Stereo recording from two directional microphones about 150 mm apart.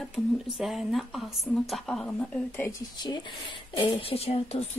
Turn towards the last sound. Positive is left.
turn(degrees=45)  # may be behind; listen again after turning